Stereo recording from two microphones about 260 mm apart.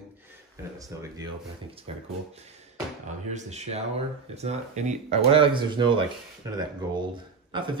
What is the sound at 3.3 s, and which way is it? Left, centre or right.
Speech, right.